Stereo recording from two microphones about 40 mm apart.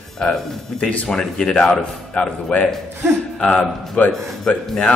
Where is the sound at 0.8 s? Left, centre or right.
Left.